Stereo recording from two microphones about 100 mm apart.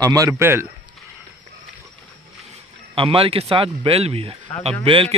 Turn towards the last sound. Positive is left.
turn(degrees=-65)  # may be behind; listen again after turning